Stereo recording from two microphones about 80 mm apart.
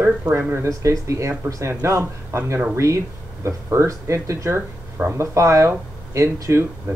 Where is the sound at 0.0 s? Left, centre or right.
Right.